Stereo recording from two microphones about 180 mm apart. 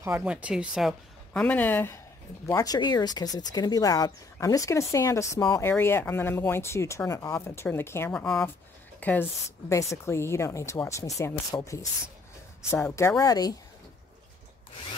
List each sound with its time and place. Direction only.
0.0 s speech: 10° right (ahead or behind); by 13.6 s 20° left (ahead or behind)